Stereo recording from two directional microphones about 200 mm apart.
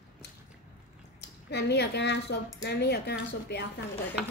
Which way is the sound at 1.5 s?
55° left (ahead or behind).